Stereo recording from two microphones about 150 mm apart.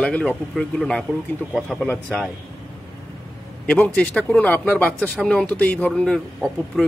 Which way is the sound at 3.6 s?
10° left (ahead or behind).